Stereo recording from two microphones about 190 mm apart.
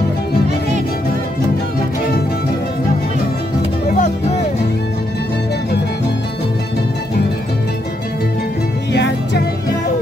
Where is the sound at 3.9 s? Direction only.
40° left (ahead or behind).